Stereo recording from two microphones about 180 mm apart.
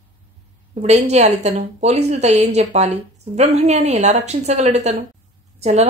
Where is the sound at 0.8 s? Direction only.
40° right (ahead or behind).